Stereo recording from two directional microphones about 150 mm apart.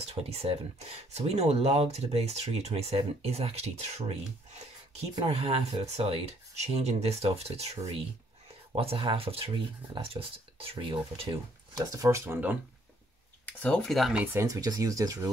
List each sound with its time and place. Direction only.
0.0 s speech: 45° right (ahead or behind); by 12.5 s 15° right (ahead or behind)
13.5 s speech: 10° left (ahead or behind)
14.2 s speech: 15° right (ahead or behind)